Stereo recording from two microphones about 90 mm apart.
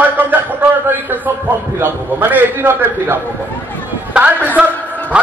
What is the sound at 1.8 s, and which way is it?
A man's voice, 20° right (ahead or behind).